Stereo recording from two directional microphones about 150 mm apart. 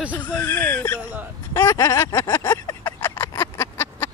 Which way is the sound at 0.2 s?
15° left (ahead or behind).